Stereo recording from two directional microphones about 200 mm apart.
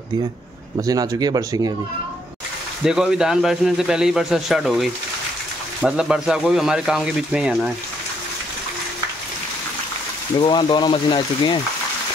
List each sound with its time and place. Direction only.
0.7 s speech: 20° right (ahead or behind)
2.8 s speech: 5° right (ahead or behind)
10.4 s speech: 20° left (ahead or behind)